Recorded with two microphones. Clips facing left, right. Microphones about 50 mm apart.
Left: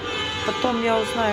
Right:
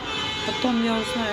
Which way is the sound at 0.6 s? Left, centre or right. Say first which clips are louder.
Left 1 dB; left.